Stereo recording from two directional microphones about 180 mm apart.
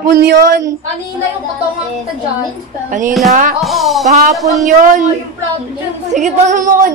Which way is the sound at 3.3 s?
55° right (ahead or behind).